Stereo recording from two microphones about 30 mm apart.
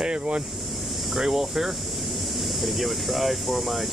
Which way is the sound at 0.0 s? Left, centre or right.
Right.